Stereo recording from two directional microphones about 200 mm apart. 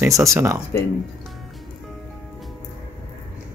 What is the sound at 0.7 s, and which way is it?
Speech, 10° left (ahead or behind).